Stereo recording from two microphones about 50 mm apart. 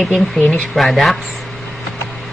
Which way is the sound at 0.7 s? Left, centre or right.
Centre.